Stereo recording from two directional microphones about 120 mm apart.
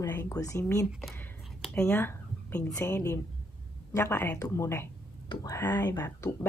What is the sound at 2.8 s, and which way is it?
Speech, 25° left (ahead or behind).